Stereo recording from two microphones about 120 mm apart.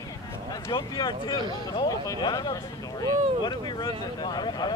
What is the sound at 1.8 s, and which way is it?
Speech, 30° left (ahead or behind).